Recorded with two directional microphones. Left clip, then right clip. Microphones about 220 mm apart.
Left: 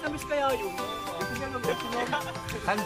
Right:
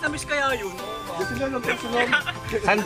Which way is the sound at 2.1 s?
25° left (ahead or behind).